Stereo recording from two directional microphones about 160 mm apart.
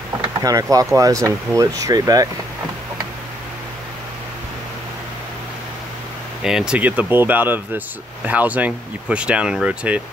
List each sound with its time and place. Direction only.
0.2 s speech: 20° right (ahead or behind)
6.4 s speech: 5° right (ahead or behind)